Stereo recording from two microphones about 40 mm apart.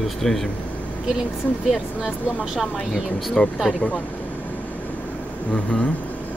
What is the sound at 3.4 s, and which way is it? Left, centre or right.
Speech, left.